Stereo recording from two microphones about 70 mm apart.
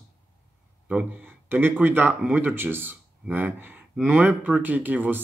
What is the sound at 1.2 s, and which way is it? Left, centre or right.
Speech, right.